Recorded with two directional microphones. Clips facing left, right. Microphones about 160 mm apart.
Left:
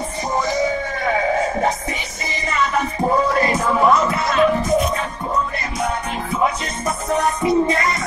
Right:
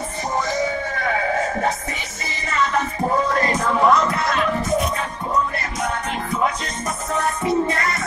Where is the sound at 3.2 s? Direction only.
10° left (ahead or behind).